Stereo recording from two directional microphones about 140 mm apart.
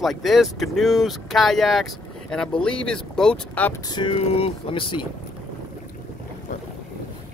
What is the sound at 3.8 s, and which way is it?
Speech, 35° left (ahead or behind).